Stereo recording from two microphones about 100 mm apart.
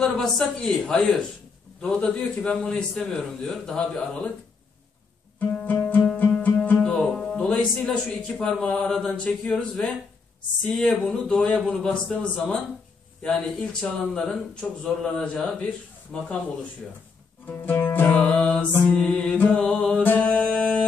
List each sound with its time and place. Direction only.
0.0 s speech: 5° left (ahead or behind)
5.4 s music: 15° left (ahead or behind)
7.2 s speech: 10° left (ahead or behind)
10.9 s speech: 5° left (ahead or behind)
17.5 s music: 20° left (ahead or behind)
19.3 s speech: 15° left (ahead or behind)
19.6 s music: 5° left (ahead or behind)
20.0 s music: 15° left (ahead or behind)